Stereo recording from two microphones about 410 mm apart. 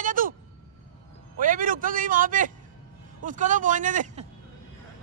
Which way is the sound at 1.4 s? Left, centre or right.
Centre.